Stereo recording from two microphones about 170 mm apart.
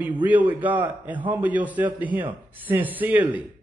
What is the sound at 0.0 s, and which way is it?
A man's voice, 10° right (ahead or behind).